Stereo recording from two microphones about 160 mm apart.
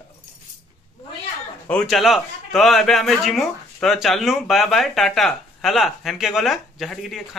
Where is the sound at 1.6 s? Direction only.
5° left (ahead or behind).